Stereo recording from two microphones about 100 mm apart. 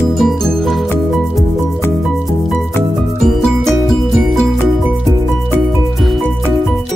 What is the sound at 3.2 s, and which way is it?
Music, 5° left (ahead or behind).